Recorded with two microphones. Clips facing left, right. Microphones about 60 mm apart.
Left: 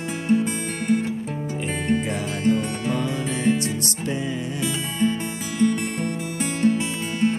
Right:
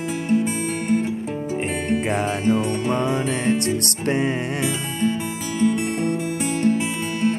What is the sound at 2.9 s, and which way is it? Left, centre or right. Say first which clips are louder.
Music: right 3 dB; right.